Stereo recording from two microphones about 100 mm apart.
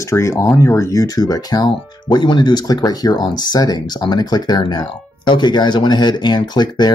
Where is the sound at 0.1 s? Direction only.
30° left (ahead or behind).